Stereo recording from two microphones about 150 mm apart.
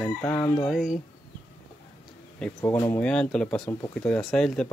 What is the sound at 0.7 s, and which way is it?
Speech, 5° right (ahead or behind).